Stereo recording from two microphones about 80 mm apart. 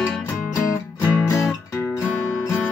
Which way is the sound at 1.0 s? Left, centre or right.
Left.